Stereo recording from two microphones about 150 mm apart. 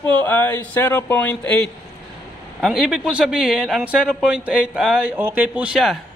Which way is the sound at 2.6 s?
Centre (ahead or behind).